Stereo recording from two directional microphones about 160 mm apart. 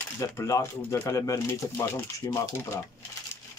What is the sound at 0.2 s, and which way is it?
Speech, 15° left (ahead or behind).